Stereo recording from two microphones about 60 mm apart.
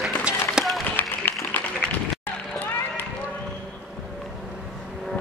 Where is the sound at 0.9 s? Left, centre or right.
Left.